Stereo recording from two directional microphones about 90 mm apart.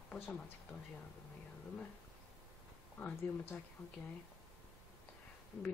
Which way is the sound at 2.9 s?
15° left (ahead or behind).